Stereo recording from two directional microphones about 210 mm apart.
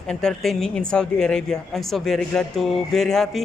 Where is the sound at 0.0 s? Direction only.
5° left (ahead or behind).